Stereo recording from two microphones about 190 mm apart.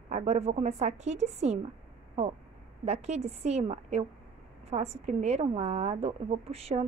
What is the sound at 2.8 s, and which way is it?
A woman's voice, 35° right (ahead or behind).